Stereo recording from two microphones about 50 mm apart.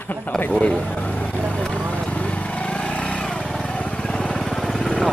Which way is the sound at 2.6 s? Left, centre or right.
Left.